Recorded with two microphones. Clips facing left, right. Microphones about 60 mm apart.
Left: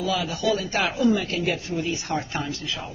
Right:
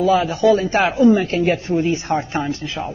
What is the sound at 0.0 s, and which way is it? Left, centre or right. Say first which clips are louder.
Speech: right 10 dB; right.